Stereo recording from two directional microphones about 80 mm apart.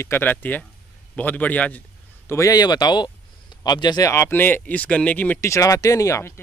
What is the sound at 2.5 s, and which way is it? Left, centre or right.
Speech, left.